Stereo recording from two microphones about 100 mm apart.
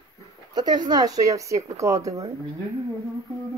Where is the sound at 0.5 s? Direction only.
45° right (ahead or behind).